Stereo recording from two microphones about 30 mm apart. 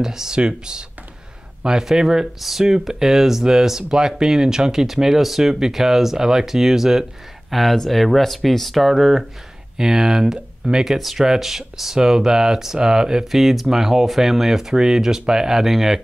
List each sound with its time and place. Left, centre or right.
0.0 s speech: centre
7.5 s speech: centre
9.8 s speech: centre
11.0 s speech: centre; by 13.2 s right
13.2 s speech: centre